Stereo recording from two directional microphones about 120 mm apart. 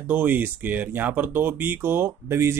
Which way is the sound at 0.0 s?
15° right (ahead or behind).